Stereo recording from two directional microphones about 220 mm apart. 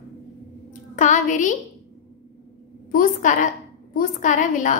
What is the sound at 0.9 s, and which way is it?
Speech, 35° left (ahead or behind).